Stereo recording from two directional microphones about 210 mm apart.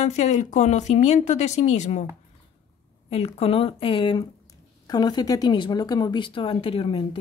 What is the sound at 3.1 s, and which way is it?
Speech, 30° left (ahead or behind).